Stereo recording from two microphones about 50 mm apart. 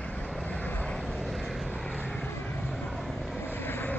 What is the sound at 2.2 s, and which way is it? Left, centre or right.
Vehicle, left.